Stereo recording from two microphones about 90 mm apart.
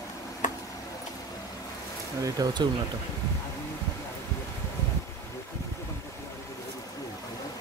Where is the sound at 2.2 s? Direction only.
45° right (ahead or behind).